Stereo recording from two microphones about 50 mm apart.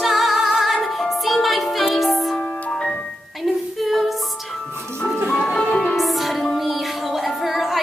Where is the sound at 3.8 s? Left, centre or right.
Centre.